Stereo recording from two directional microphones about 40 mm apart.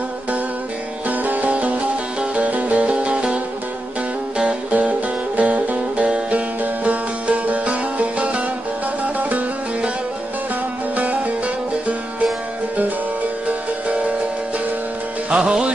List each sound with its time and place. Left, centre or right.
1.0 s music: right
4.6 s music: right
6.6 s music: right
11.0 s music: right
13.8 s music: right
15.3 s music: centre